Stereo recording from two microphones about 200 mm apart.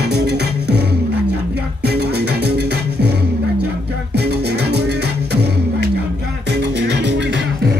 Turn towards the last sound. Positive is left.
turn(degrees=-60)  # may be behind; listen again after turning